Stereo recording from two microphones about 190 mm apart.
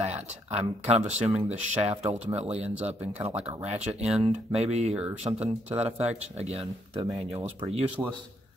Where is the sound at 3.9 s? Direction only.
Centre (ahead or behind).